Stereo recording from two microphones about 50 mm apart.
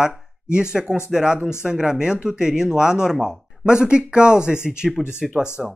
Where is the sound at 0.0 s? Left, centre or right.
Centre.